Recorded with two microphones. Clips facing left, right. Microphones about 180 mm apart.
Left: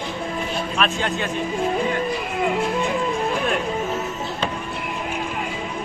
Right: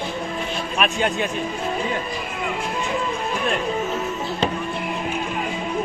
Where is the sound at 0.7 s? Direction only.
15° right (ahead or behind).